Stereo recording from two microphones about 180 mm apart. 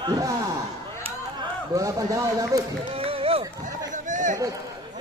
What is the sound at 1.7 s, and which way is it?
Speech, 20° right (ahead or behind).